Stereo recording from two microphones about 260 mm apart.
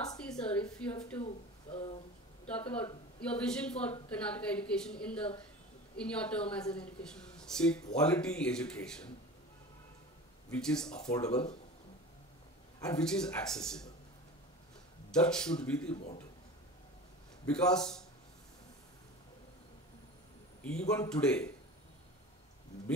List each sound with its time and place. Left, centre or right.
0.2 s a sound: centre
1.2 s speech: left
2.4 s a woman's voice: centre
10.5 s a woman's voice: centre
11.2 s speech: left
13.0 s a woman's voice: centre
15.0 s a woman's voice: centre
15.9 s speech: left
17.5 s a woman's voice: centre
20.9 s a woman's voice: centre